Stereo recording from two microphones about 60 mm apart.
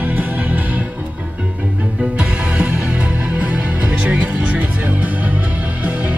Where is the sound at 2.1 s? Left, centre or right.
Right.